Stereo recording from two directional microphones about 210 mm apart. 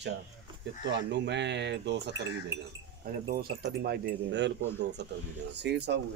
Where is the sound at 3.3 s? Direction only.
50° right (ahead or behind).